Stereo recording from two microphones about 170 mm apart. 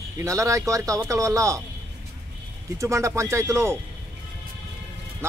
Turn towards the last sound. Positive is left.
turn(degrees=-15)  # may be behind; listen again after turning